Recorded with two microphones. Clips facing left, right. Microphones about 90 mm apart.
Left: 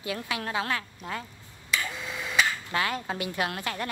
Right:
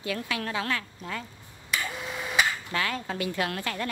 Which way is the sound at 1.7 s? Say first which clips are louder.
Even; 10° right (ahead or behind).